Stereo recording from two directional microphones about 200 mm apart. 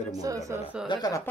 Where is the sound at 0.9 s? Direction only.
20° left (ahead or behind).